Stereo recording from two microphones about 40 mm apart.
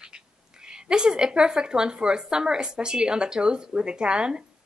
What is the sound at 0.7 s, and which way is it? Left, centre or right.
A woman's voice, centre.